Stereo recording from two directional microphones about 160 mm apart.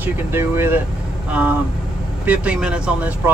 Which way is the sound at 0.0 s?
15° right (ahead or behind).